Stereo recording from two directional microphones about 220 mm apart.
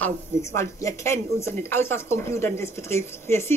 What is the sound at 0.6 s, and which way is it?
Speech, 10° left (ahead or behind).